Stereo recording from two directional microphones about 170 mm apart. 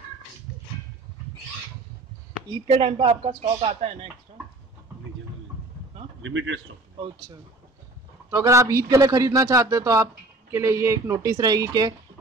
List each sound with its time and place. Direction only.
2.7 s speech: 35° right (ahead or behind)
8.3 s a man's voice: 20° right (ahead or behind)